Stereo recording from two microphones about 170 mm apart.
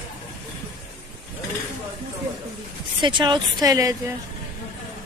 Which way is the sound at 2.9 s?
25° right (ahead or behind).